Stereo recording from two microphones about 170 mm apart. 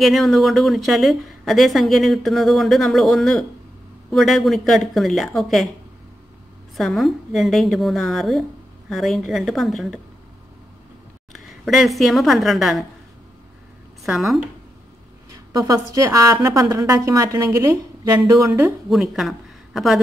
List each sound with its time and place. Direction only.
0.0 s a woman's voice: centre (ahead or behind)
6.8 s a woman's voice: centre (ahead or behind)
11.3 s a woman's voice: centre (ahead or behind)
14.0 s a woman's voice: centre (ahead or behind)
15.3 s a woman's voice: 20° right (ahead or behind)
18.5 s a woman's voice: 5° right (ahead or behind)